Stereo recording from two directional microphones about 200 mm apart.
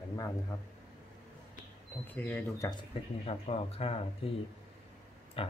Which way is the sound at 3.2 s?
30° left (ahead or behind).